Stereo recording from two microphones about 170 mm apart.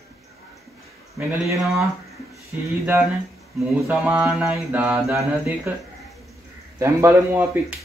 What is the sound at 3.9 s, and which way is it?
Music, 10° right (ahead or behind).